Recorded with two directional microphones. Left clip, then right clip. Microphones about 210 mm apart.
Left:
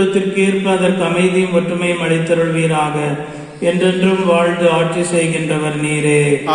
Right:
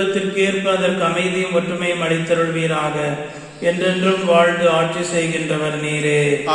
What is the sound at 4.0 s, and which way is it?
Mantra, 35° left (ahead or behind).